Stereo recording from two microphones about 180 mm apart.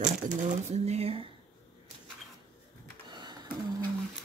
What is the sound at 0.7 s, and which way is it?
Speech, 35° right (ahead or behind).